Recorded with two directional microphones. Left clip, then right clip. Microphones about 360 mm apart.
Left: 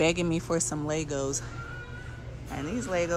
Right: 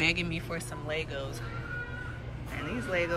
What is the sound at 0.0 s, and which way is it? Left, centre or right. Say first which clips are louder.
Speech: left 3 dB; centre.